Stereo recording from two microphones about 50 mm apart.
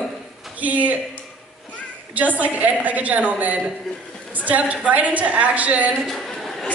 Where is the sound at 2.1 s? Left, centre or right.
Right.